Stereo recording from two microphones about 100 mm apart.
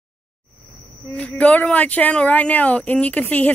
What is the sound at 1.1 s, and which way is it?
Speech, 10° left (ahead or behind).